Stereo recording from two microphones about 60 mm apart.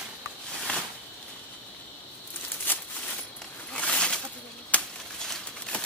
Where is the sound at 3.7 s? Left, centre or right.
Centre.